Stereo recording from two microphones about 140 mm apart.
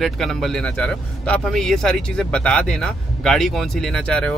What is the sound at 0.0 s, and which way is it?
Speech, 5° left (ahead or behind).